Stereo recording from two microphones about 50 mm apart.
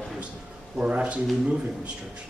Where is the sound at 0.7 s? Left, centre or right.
Right.